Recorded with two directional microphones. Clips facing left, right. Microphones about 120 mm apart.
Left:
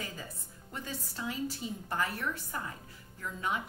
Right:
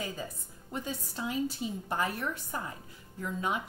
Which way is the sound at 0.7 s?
20° right (ahead or behind).